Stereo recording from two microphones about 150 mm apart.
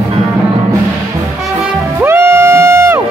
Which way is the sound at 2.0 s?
15° right (ahead or behind).